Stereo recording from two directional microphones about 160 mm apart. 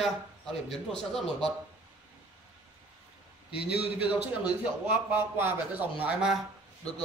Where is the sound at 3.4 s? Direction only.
5° right (ahead or behind).